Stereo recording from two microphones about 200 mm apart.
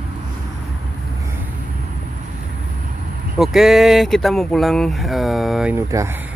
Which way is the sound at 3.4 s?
Centre (ahead or behind).